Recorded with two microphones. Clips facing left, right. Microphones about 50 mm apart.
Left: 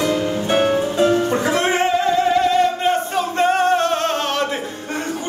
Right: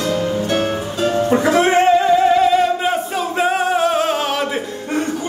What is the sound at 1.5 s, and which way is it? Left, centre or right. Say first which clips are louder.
Singing: right 7 dB; centre.